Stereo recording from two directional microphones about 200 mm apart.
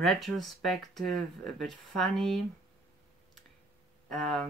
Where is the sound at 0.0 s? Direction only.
Centre (ahead or behind).